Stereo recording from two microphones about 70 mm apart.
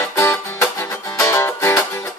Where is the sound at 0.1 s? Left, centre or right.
Left.